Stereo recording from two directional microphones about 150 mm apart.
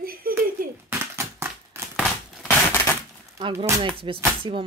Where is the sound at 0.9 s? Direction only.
15° right (ahead or behind).